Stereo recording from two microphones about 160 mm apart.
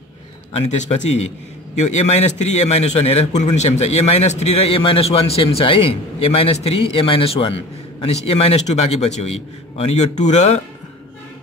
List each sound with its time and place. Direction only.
0.7 s a man's voice: 45° left (ahead or behind)